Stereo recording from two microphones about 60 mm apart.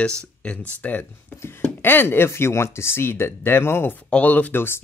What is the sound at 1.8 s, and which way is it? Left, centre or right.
Speech, left.